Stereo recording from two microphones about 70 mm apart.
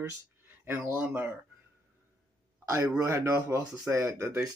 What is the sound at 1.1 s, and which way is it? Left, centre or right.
Speech, right.